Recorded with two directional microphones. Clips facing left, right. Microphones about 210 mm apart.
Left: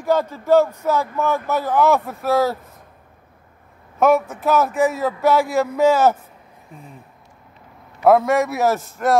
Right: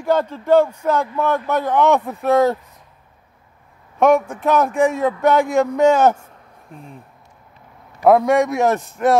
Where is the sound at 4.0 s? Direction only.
5° left (ahead or behind).